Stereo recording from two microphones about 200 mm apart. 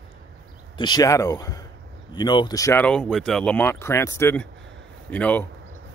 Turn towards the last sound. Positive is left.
turn(degrees=5)  # may be behind; listen again after turning